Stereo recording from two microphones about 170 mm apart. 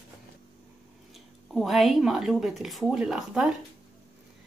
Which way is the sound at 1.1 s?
Centre (ahead or behind).